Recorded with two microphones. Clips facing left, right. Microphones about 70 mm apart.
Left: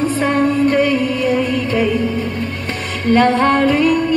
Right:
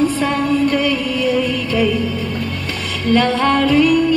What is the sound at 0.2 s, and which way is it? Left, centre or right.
Music, left.